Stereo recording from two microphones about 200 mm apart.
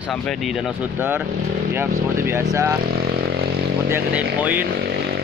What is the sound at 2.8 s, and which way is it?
Speech, 50° right (ahead or behind).